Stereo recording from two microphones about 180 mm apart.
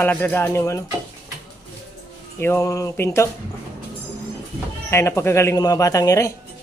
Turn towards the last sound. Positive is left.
turn(degrees=20)  # may be behind; listen again after turning